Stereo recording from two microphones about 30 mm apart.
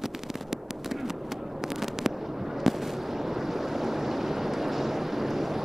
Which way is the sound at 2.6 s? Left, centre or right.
Centre.